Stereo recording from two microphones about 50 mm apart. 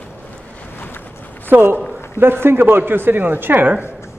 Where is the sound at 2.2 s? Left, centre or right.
Right.